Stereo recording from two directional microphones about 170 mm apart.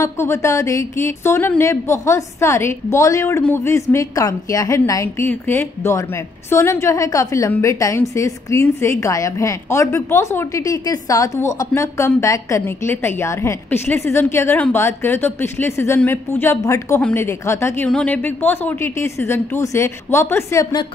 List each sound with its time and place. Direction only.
0.0 s a woman's voice: 15° left (ahead or behind)